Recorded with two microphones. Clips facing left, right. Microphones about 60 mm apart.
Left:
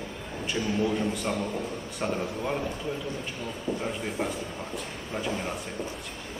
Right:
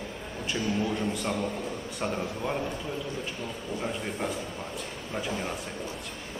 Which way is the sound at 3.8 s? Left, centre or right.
Centre.